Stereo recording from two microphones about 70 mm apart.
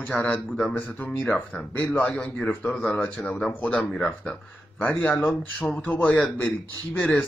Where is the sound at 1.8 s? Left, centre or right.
Left.